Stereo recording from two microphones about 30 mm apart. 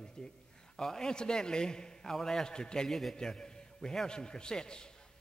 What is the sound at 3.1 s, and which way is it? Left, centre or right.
A man's voice, left.